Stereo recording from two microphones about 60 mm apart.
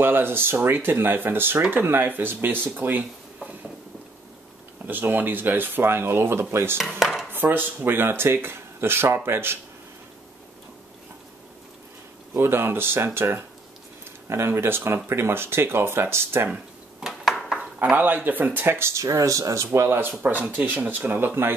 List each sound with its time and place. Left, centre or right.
0.0 s speech: right
4.8 s speech: right
7.0 s dishes: centre
7.2 s speech: right
12.4 s speech: right
17.0 s a sound: centre
17.9 s speech: right
20.0 s speech: right